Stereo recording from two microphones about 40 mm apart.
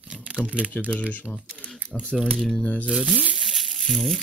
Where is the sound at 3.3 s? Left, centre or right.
Centre.